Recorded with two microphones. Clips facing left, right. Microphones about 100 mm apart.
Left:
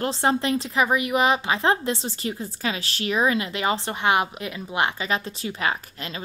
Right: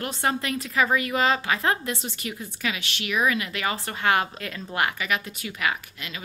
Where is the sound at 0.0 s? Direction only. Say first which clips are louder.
Left 4 dB; 30° left (ahead or behind).